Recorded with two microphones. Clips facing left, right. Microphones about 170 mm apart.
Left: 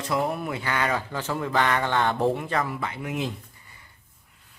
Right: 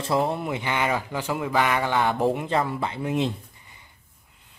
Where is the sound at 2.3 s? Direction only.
25° right (ahead or behind).